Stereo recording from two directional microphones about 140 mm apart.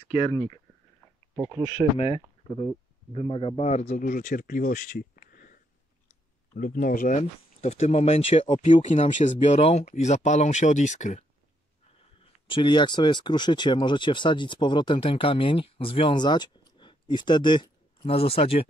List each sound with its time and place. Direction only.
0.1 s speech: 40° left (ahead or behind)
1.8 s speech: centre (ahead or behind)
2.4 s speech: 35° left (ahead or behind)
3.1 s a man's voice: 45° left (ahead or behind)
4.1 s speech: 75° left (ahead or behind); by 11.2 s 60° left (ahead or behind)
12.4 s speech: 35° left (ahead or behind)